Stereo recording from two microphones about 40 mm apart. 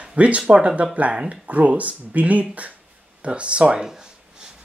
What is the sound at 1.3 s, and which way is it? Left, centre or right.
Speech, right.